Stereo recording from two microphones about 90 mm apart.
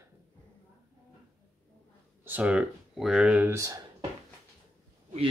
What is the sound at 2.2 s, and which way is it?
Speech, 15° right (ahead or behind).